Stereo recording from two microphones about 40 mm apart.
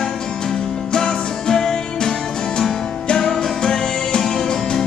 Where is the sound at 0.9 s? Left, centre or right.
Centre.